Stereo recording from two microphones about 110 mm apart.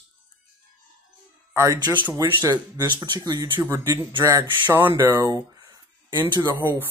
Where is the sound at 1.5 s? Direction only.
25° right (ahead or behind).